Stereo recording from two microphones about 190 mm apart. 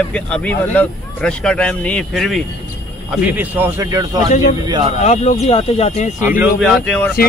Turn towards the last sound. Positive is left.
turn(degrees=5)  # may be behind; listen again after turning